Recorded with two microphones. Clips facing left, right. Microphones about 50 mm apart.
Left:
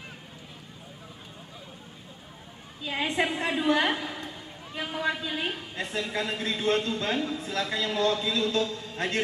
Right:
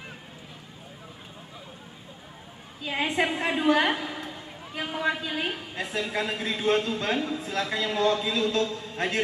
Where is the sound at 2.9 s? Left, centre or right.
Centre.